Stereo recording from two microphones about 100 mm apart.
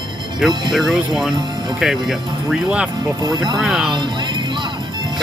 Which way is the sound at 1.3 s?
50° right (ahead or behind).